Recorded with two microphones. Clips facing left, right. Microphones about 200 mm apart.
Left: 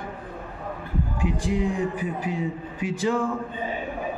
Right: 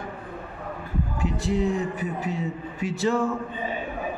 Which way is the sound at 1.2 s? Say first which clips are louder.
Right 1 dB; 15° left (ahead or behind).